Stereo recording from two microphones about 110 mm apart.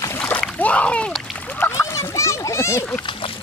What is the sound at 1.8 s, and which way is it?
A child's voice, 30° left (ahead or behind).